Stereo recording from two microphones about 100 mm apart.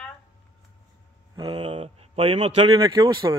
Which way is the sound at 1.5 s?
60° right (ahead or behind).